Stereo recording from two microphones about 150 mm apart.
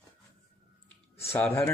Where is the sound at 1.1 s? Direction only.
15° left (ahead or behind).